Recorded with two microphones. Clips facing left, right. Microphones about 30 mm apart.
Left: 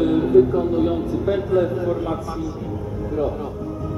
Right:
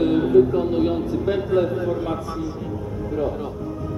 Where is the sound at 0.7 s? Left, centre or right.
Right.